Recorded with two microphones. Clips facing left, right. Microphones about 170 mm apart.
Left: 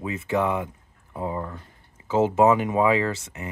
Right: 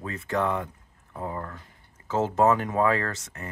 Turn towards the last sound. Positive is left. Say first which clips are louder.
# left 3 dB
turn(degrees=10)  # may be behind; listen again after turning